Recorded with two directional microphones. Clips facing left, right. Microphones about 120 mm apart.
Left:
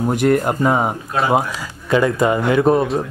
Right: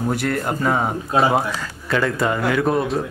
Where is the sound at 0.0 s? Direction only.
20° left (ahead or behind).